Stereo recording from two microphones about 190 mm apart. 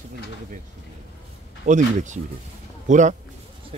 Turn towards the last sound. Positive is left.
turn(degrees=-40)  # may be behind; listen again after turning